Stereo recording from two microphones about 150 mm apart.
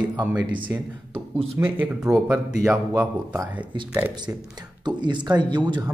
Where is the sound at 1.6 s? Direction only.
10° right (ahead or behind).